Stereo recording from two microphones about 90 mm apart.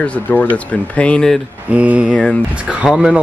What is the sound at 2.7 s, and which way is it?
Speech, 10° right (ahead or behind).